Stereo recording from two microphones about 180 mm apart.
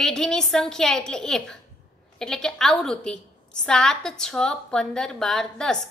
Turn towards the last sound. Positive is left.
turn(degrees=5)  # may be behind; listen again after turning